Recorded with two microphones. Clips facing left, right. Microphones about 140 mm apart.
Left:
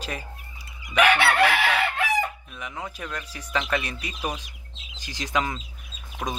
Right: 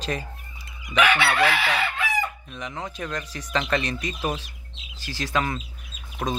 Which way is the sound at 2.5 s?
5° left (ahead or behind).